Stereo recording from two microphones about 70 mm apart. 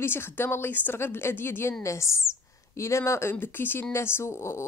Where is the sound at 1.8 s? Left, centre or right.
Left.